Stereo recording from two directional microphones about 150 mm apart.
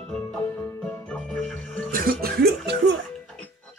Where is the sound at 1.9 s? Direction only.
90° right.